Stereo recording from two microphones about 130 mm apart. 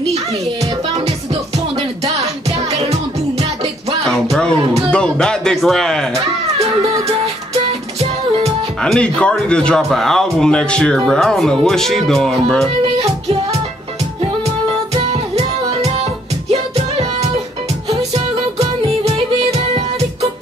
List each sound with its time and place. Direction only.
0.9 s music: 50° right (ahead or behind)
4.0 s music: 5° left (ahead or behind)
4.9 s a sound: 5° left (ahead or behind)
6.6 s music: 50° right (ahead or behind)
8.8 s speech: 5° left (ahead or behind)
15.0 s music: 55° right (ahead or behind)